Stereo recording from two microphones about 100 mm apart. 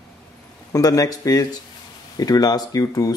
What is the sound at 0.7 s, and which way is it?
Speech, 35° left (ahead or behind).